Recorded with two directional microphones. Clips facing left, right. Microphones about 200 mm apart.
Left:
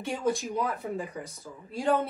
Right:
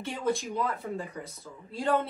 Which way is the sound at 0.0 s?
15° left (ahead or behind).